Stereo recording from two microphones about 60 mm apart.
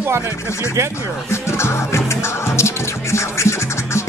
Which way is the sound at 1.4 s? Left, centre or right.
Left.